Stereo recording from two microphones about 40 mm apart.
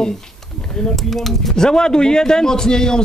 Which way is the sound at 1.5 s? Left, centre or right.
Centre.